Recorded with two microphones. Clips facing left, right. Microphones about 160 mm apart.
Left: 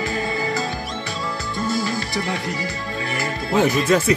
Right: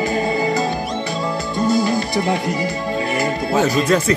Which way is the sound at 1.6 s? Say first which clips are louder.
Right 7 dB; 15° right (ahead or behind).